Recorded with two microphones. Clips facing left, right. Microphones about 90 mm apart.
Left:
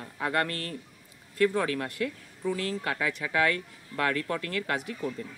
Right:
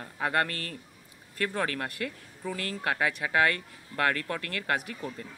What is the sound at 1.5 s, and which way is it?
Speech, 55° right (ahead or behind).